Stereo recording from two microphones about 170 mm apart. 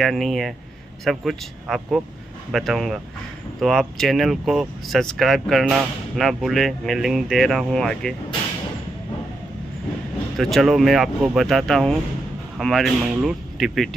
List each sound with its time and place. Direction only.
0.0 s speech: centre (ahead or behind)
10.3 s speech: centre (ahead or behind)